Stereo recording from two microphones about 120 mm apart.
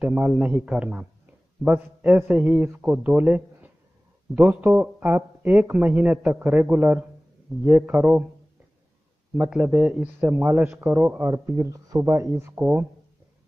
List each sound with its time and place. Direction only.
0.0 s a man's voice: 5° right (ahead or behind)
2.3 s a man's voice: 5° right (ahead or behind)
4.3 s a man's voice: centre (ahead or behind)
5.0 s a man's voice: 15° right (ahead or behind)
9.3 s a man's voice: 10° right (ahead or behind)
10.7 s a man's voice: 15° right (ahead or behind)
11.1 s speech: 30° right (ahead or behind)